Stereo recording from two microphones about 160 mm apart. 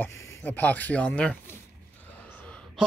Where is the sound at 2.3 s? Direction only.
5° left (ahead or behind).